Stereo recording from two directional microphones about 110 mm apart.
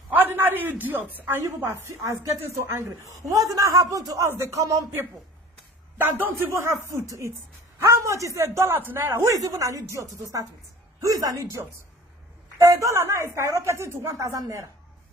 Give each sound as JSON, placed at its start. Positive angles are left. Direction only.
{"t": 0.1, "sound": "a sound", "side_deg": -20}
{"t": 0.7, "sound": "speech", "side_deg": -15}
{"t": 1.9, "sound": "speech", "side_deg": -30}
{"t": 5.9, "sound": "speech", "side_deg": -20}